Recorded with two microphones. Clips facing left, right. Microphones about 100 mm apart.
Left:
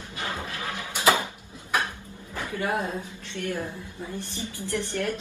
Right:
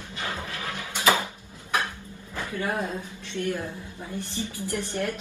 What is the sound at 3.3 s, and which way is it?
Speech, 20° right (ahead or behind).